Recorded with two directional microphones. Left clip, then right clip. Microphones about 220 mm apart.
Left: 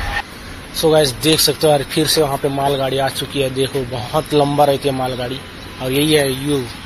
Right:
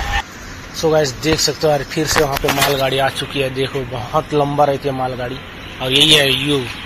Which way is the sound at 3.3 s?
25° left (ahead or behind).